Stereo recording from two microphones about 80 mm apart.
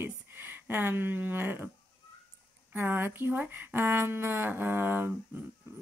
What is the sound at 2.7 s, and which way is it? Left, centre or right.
Speech, right.